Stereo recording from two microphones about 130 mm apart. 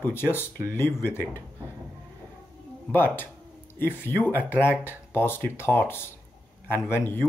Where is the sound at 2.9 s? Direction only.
15° left (ahead or behind).